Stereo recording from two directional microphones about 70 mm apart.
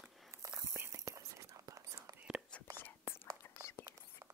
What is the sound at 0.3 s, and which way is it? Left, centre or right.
Whispering, right.